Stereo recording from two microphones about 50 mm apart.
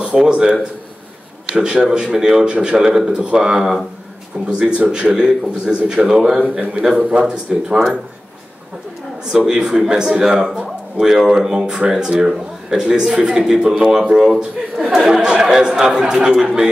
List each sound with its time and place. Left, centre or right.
0.0 s a man's voice: centre
7.0 s speech: right
9.3 s a man's voice: centre
11.5 s a man's voice: centre